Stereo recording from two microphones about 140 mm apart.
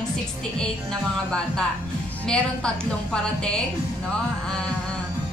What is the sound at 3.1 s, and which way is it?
Speech, 5° left (ahead or behind).